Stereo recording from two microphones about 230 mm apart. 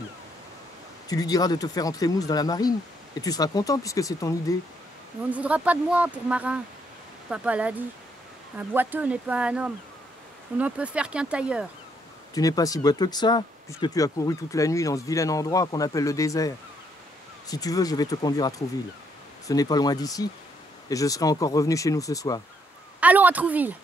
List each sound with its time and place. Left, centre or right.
1.0 s speech: centre
5.3 s speech: centre
12.4 s speech: centre
22.9 s a woman's voice: centre